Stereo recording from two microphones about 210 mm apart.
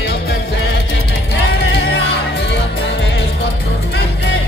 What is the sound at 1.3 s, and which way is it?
Music, 55° left (ahead or behind).